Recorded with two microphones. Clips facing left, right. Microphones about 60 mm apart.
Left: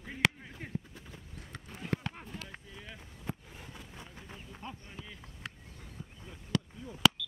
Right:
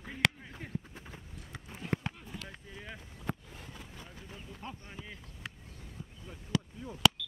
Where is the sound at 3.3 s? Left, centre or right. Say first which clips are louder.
Right 3 dB; right.